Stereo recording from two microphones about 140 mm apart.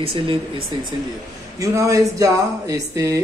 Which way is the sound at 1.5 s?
20° right (ahead or behind).